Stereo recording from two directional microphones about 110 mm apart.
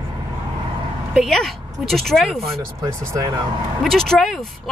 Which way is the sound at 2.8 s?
35° right (ahead or behind).